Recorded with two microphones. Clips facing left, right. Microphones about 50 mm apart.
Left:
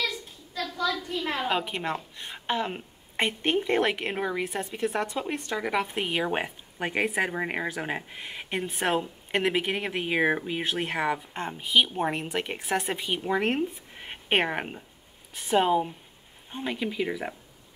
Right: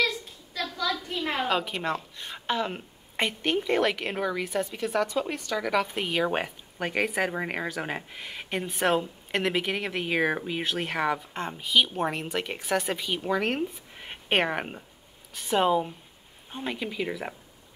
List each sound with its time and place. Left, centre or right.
1.5 s a woman's voice: centre
10.6 s a woman's voice: centre
13.6 s speech: centre